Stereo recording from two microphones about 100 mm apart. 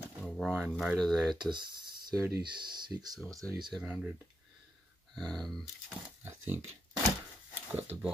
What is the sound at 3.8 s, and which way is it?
Speech, 10° right (ahead or behind).